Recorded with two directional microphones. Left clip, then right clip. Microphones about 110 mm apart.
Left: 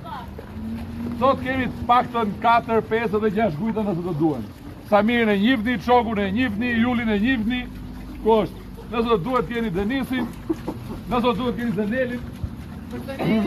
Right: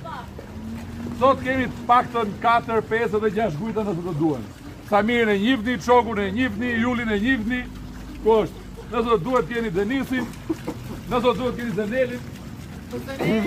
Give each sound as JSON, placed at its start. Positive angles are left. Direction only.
{"t": 1.2, "sound": "a man's voice", "side_deg": 25}
{"t": 8.9, "sound": "a man's voice", "side_deg": 25}
{"t": 13.2, "sound": "speech", "side_deg": 15}